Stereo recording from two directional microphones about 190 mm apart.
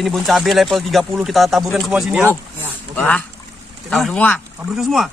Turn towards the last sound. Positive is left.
turn(degrees=0)  # may be behind; listen again after turning